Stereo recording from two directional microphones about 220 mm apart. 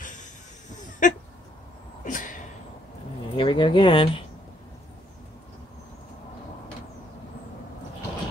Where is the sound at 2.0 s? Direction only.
35° left (ahead or behind).